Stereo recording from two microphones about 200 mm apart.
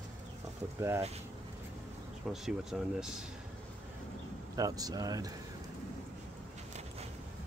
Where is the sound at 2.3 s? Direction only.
Centre (ahead or behind).